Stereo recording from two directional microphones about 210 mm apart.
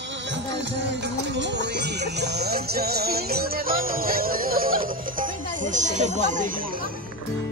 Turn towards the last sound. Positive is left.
turn(degrees=-40)  # may be behind; listen again after turning